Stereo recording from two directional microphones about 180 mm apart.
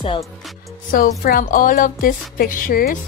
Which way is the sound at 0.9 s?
55° left (ahead or behind).